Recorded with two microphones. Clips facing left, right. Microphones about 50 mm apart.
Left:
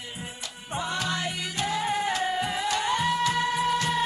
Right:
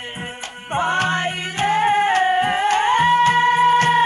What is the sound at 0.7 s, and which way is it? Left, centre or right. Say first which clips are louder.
Music: right 10 dB; right.